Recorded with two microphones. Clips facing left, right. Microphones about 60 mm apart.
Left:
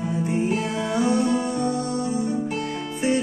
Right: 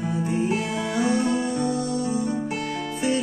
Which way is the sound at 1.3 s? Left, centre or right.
Left.